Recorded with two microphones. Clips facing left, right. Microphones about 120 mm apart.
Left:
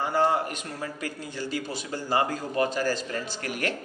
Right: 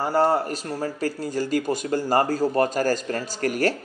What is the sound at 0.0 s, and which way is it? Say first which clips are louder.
A man's voice: right 4 dB; 35° right (ahead or behind).